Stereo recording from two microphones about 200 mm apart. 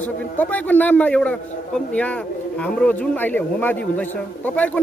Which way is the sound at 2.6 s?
5° left (ahead or behind).